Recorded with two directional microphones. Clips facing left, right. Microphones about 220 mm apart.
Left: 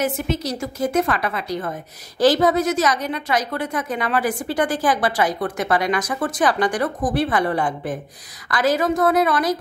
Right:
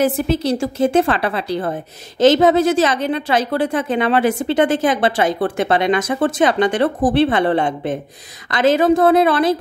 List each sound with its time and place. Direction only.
0.0 s a woman's voice: 30° right (ahead or behind)